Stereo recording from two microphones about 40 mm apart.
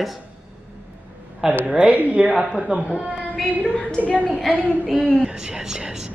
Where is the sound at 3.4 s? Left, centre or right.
Right.